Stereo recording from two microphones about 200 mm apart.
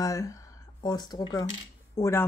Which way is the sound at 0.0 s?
15° left (ahead or behind).